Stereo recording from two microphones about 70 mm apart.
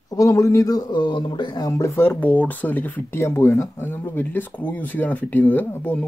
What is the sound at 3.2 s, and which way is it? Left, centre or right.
Speech, left.